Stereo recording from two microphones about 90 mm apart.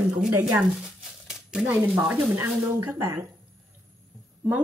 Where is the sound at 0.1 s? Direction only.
15° right (ahead or behind).